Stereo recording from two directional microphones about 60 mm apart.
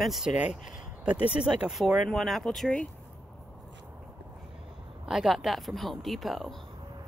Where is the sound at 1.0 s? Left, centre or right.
Centre.